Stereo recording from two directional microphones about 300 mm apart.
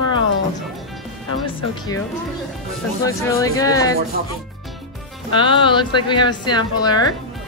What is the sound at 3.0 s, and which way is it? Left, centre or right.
Speech, centre.